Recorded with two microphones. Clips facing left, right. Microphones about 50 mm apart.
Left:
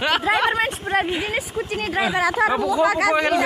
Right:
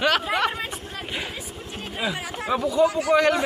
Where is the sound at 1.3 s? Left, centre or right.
Left.